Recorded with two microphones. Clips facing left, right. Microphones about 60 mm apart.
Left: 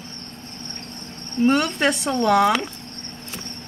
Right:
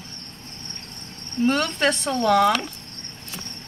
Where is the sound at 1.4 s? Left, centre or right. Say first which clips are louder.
Left 2 dB; centre.